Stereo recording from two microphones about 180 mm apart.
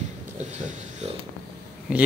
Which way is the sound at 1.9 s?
5° right (ahead or behind).